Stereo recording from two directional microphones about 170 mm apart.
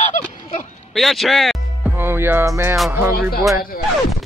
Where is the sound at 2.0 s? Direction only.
15° right (ahead or behind).